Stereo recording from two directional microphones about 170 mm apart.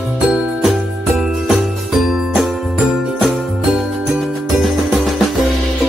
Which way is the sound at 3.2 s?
Centre (ahead or behind).